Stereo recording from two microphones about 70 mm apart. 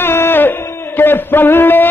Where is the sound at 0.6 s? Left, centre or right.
Left.